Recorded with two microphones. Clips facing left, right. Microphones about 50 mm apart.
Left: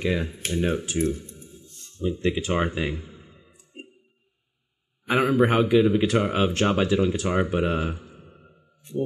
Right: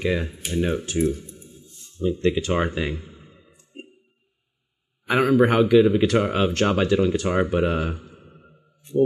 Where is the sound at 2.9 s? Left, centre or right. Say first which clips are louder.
Right 1 dB; centre.